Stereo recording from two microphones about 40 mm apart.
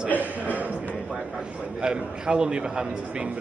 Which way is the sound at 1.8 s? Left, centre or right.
Right.